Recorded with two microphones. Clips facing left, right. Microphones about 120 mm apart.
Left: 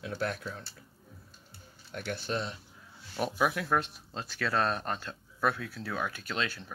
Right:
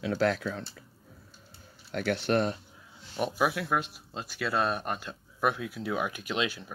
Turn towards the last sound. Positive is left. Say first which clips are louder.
# right 3 dB
turn(degrees=-10)  # may be behind; listen again after turning